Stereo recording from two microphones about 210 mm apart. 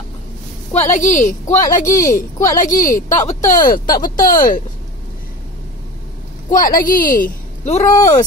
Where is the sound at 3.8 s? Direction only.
20° left (ahead or behind).